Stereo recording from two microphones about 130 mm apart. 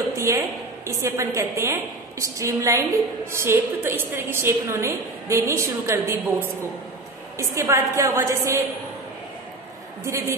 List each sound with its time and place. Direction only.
0.3 s a woman's voice: 25° right (ahead or behind)
10.0 s a woman's voice: 20° right (ahead or behind)